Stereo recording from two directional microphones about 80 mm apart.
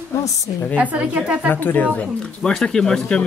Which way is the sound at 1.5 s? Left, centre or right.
Left.